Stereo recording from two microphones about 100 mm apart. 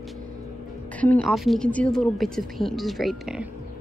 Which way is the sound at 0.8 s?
15° left (ahead or behind).